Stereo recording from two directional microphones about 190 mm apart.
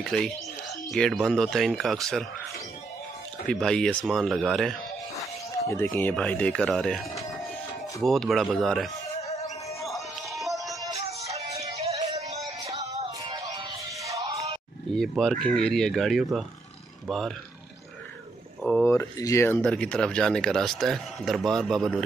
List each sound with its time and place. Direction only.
0.0 s speech: centre (ahead or behind)
3.4 s speech: 5° left (ahead or behind)
9.8 s music: centre (ahead or behind)
11.3 s music: 35° right (ahead or behind)
12.7 s music: 20° right (ahead or behind)
14.9 s speech: centre (ahead or behind)
18.6 s speech: 5° left (ahead or behind)